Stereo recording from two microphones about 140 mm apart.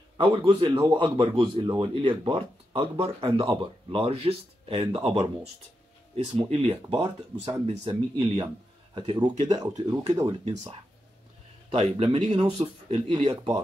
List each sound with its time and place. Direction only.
0.2 s speech: 35° right (ahead or behind)
6.5 s speech: 40° right (ahead or behind)
7.6 s speech: 40° right (ahead or behind)
11.7 s speech: 50° right (ahead or behind)